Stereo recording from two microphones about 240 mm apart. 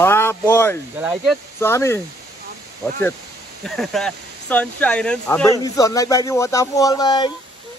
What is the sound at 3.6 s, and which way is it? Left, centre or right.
Speech, centre.